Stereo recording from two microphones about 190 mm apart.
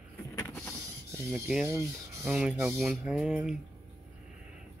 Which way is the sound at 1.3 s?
5° right (ahead or behind).